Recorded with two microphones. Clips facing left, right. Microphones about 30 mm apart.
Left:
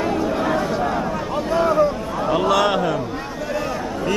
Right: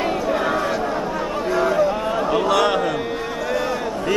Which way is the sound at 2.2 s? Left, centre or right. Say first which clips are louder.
Left 2 dB; centre.